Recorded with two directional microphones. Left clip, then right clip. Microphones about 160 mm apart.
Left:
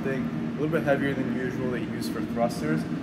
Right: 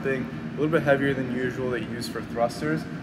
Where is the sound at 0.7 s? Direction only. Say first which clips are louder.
Right 3 dB; 25° right (ahead or behind).